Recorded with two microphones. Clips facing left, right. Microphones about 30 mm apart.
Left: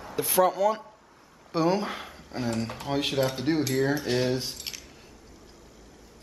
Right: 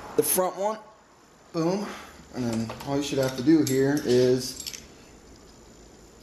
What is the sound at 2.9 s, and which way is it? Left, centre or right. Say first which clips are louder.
Speech: right 1 dB; left.